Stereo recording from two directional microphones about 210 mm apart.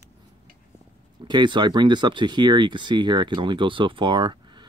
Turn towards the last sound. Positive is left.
turn(degrees=-20)  # may be behind; listen again after turning